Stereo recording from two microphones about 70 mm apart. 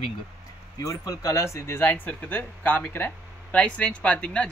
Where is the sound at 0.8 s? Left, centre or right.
Left.